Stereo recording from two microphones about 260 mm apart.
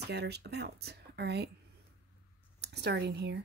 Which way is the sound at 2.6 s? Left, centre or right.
Right.